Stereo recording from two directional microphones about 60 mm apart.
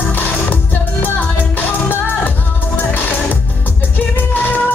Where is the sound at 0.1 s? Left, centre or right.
Left.